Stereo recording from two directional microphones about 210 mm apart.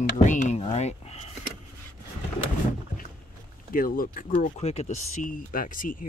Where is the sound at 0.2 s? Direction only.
35° left (ahead or behind).